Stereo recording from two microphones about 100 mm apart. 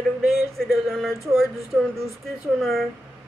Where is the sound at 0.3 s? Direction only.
Centre (ahead or behind).